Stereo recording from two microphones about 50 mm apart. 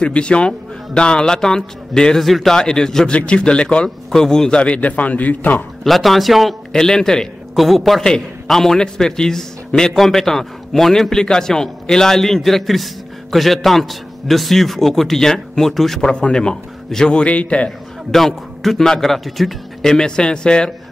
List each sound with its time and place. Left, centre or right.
0.0 s a man's voice: left
2.2 s a man's voice: centre
2.5 s a man's voice: centre
3.1 s a man's voice: left
5.9 s a man's voice: centre
6.7 s a man's voice: centre
7.5 s a man's voice: centre
16.1 s a man's voice: centre
17.2 s a man's voice: left
17.6 s a man's voice: centre
19.9 s a man's voice: centre